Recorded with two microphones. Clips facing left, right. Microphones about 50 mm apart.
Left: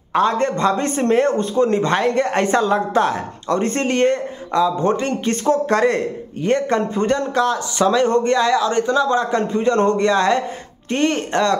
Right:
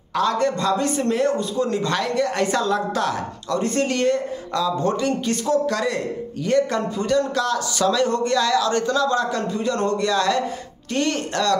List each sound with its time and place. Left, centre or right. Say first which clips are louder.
0.1 s a man's voice: left 3 dB; left
5.0 s a man's voice: left 3 dB; left